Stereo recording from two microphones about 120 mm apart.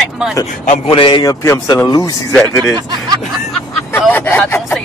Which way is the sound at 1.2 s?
30° left (ahead or behind).